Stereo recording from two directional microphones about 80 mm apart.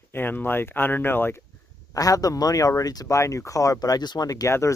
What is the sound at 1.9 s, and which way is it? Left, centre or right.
Speech, left.